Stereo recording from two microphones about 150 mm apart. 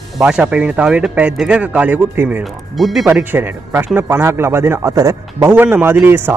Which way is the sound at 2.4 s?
Centre (ahead or behind).